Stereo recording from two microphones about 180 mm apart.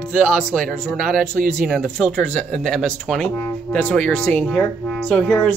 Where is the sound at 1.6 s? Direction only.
Centre (ahead or behind).